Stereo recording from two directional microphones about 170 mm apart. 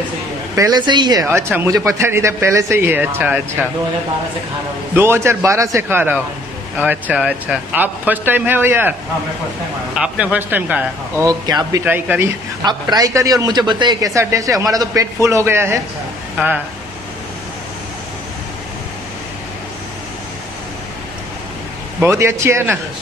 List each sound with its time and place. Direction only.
0.6 s a man's voice: 25° right (ahead or behind)
1.3 s a man's voice: 15° right (ahead or behind)
4.9 s a man's voice: 15° right (ahead or behind)
9.9 s a man's voice: 5° right (ahead or behind)
11.2 s a man's voice: 20° right (ahead or behind)
11.8 s a man's voice: 10° right (ahead or behind)
12.6 s a man's voice: 20° right (ahead or behind)
22.0 s a man's voice: 15° right (ahead or behind)